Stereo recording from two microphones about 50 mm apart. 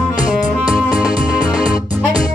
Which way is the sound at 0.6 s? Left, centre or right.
Right.